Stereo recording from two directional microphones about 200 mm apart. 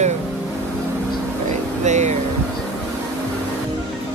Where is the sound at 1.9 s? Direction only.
35° right (ahead or behind).